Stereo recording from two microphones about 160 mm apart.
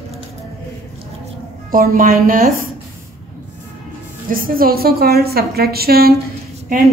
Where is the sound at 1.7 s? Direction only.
60° right (ahead or behind).